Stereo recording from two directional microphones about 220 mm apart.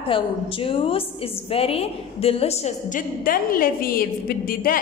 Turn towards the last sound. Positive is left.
turn(degrees=40)  # may be behind; listen again after turning